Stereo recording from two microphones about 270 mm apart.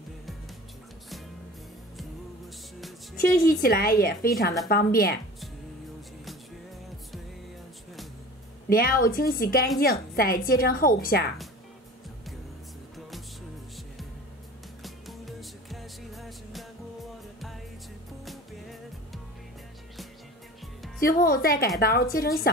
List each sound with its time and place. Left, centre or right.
3.2 s a woman's voice: left
8.6 s a woman's voice: left
14.8 s music: centre
21.0 s a woman's voice: left